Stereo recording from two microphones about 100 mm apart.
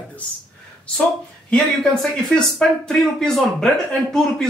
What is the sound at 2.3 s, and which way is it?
Speech, 5° left (ahead or behind).